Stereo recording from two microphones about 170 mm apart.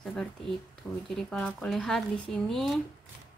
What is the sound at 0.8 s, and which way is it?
Speech, 10° left (ahead or behind).